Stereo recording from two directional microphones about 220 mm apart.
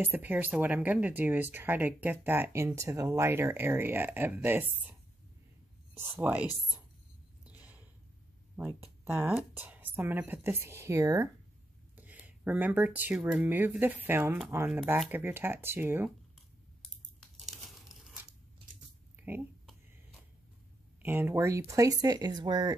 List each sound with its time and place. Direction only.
0.0 s speech: 10° right (ahead or behind)
5.9 s speech: 10° right (ahead or behind)
7.4 s a sound: 5° right (ahead or behind)
8.5 s speech: 10° right (ahead or behind)
17.2 s tearing: centre (ahead or behind)
19.6 s a sound: centre (ahead or behind)
21.0 s speech: 10° right (ahead or behind)